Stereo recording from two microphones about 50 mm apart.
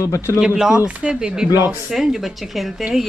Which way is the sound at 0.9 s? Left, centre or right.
Right.